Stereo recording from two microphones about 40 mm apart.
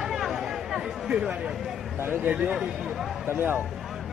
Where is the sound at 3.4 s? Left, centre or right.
Right.